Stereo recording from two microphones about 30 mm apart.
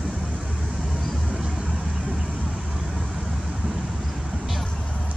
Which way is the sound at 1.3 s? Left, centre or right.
Right.